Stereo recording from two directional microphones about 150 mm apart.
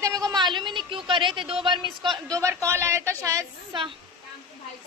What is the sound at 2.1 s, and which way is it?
Speech, 20° right (ahead or behind).